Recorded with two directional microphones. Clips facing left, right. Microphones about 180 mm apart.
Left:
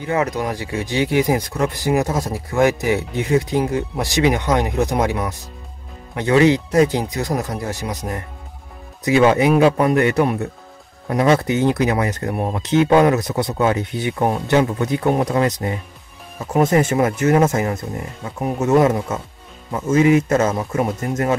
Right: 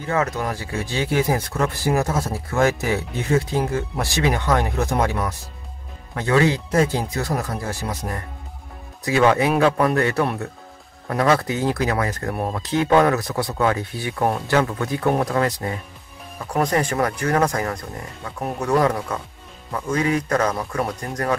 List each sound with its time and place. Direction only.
0.1 s speech: 15° left (ahead or behind)